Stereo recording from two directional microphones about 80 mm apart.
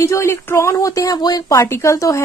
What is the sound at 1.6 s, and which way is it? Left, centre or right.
Speech, left.